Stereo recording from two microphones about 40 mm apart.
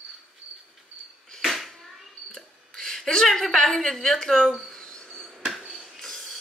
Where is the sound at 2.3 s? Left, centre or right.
Centre.